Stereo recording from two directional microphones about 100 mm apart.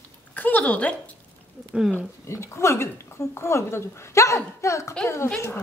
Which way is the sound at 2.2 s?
25° left (ahead or behind).